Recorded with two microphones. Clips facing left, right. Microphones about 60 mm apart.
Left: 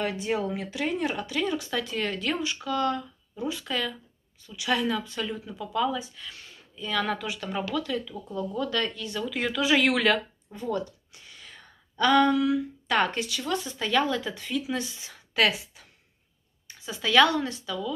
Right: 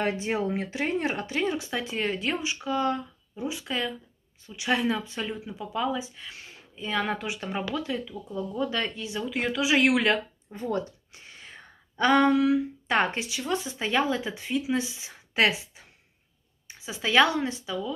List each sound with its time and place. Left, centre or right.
0.0 s speech: right
9.6 s speech: centre
10.1 s a sound: right
13.5 s a woman's voice: right
15.6 s a sound: right
17.0 s speech: right